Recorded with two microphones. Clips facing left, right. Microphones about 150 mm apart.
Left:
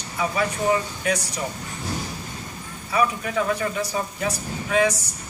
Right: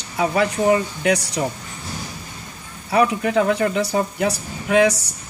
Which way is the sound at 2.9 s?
65° right (ahead or behind).